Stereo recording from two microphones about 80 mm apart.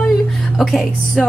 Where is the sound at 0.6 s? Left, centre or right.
Centre.